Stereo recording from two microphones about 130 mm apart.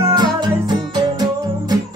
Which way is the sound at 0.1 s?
35° right (ahead or behind).